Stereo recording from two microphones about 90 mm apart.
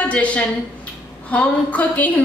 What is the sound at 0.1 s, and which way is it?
A woman's voice, 15° left (ahead or behind).